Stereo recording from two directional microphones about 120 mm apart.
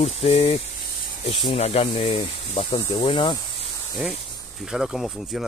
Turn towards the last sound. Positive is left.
turn(degrees=0)  # may be behind; listen again after turning